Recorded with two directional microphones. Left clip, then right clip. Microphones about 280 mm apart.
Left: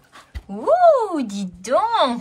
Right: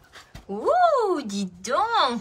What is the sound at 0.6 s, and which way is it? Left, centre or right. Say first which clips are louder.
Speech: left 5 dB; centre.